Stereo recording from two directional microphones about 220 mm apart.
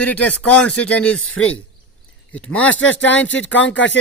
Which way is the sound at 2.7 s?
60° left (ahead or behind).